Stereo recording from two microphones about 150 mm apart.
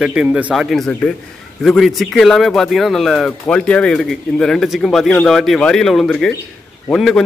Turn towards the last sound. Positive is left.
turn(degrees=0)  # may be behind; listen again after turning